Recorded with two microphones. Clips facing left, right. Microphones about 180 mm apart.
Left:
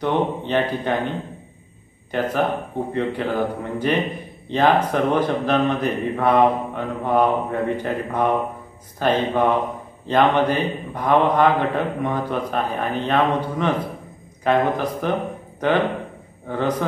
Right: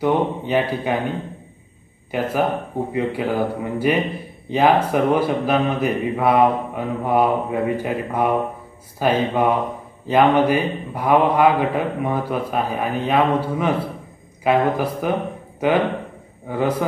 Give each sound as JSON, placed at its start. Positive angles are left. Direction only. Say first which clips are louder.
{"t": 0.0, "sound": "speech", "louder": "right 2 dB", "side_deg": -10}